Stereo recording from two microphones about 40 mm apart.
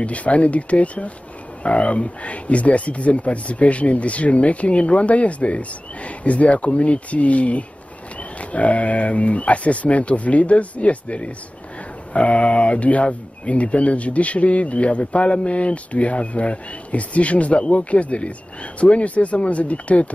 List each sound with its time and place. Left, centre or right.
0.0 s speech: left